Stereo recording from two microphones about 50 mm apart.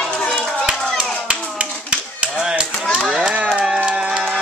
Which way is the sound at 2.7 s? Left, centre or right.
Centre.